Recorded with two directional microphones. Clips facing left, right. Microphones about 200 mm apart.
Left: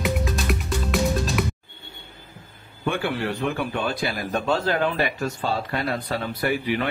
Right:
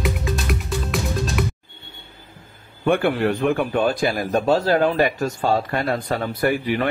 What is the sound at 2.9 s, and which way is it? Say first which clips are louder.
A man's voice: right 7 dB; 55° right (ahead or behind).